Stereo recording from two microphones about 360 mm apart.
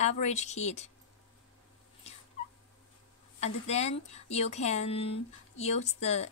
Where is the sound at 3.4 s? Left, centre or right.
Centre.